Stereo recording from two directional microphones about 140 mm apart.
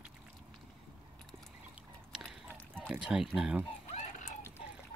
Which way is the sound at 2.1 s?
5° right (ahead or behind).